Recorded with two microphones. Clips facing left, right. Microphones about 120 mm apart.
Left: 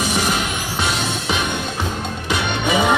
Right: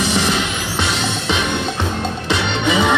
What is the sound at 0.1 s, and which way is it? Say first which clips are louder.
Music: right 2 dB; 45° left (ahead or behind).